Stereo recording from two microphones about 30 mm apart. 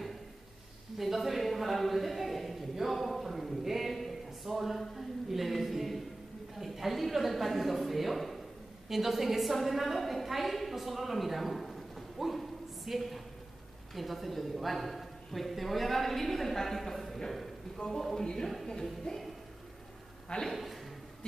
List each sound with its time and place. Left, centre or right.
0.9 s a sound: centre
4.6 s music: centre
6.6 s a woman's voice: centre
18.1 s music: centre
20.4 s a man's voice: centre